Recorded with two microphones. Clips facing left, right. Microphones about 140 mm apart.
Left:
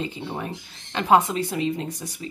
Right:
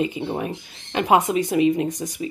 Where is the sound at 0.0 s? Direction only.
15° right (ahead or behind).